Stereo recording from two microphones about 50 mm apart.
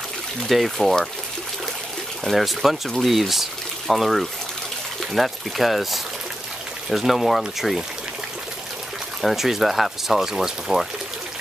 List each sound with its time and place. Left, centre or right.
0.5 s speech: centre
2.2 s speech: centre
9.2 s speech: centre